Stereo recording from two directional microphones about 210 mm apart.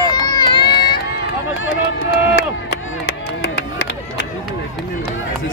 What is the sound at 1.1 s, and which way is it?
Run, 60° left (ahead or behind).